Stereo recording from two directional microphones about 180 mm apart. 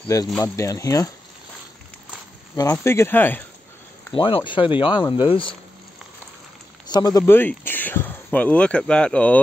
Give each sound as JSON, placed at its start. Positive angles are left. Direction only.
{"t": 0.4, "sound": "speech", "side_deg": 15}
{"t": 2.5, "sound": "speech", "side_deg": 15}
{"t": 4.1, "sound": "speech", "side_deg": 30}
{"t": 6.9, "sound": "speech", "side_deg": 20}